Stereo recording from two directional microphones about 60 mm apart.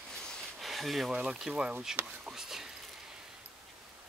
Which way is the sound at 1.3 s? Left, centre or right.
Centre.